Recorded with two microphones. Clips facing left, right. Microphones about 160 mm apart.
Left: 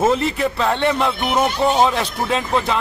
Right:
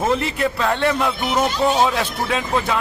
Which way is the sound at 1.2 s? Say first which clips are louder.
Left 1 dB; 60° left (ahead or behind).